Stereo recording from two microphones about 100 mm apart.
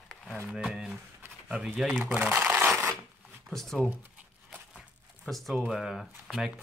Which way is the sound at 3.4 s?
5° left (ahead or behind).